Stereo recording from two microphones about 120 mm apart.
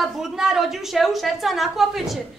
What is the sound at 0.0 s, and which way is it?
A woman's voice, 5° right (ahead or behind).